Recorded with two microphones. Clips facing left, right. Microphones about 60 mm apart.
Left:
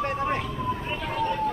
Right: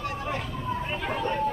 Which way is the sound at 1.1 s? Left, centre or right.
Right.